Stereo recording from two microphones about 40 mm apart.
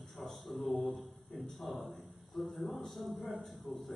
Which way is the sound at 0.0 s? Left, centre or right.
Centre.